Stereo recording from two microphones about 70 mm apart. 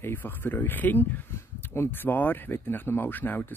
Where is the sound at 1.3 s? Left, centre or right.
Left.